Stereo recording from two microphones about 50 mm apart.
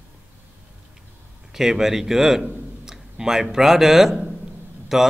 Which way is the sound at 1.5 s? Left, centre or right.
Centre.